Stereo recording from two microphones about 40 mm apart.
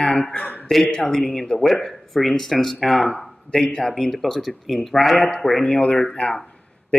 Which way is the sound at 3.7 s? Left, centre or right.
Centre.